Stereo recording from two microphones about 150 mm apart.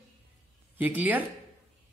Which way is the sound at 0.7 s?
10° right (ahead or behind).